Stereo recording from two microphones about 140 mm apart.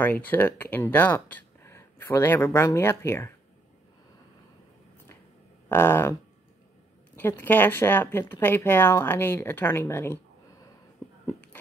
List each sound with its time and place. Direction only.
0.0 s speech: 10° left (ahead or behind)
5.7 s speech: 15° left (ahead or behind)
7.2 s speech: 15° left (ahead or behind)